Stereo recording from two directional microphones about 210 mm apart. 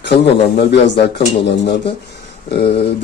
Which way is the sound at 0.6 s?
55° left (ahead or behind).